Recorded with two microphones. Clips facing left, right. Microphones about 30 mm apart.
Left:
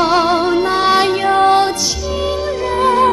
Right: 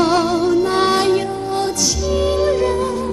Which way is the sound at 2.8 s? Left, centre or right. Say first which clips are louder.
Left 8 dB; left.